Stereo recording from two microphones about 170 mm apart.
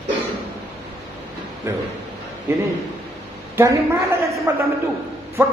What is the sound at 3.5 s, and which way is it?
A man's voice, 15° right (ahead or behind).